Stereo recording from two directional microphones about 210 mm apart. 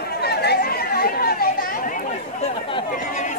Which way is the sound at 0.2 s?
50° left (ahead or behind).